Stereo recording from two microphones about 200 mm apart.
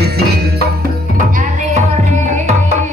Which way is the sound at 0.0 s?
50° right (ahead or behind).